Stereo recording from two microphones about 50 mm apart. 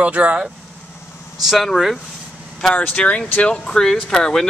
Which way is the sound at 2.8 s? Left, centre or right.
Left.